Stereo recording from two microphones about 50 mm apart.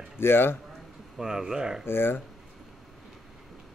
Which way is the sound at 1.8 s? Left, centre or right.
Left.